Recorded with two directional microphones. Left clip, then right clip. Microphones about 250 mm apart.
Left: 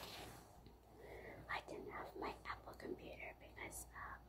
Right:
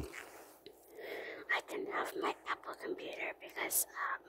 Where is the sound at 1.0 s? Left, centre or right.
Right.